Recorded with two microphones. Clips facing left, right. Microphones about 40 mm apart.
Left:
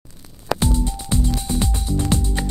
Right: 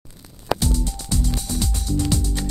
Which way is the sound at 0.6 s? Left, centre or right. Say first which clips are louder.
Left 3 dB; left.